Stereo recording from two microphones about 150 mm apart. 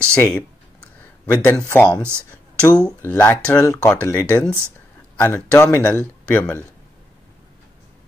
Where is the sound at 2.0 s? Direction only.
15° right (ahead or behind).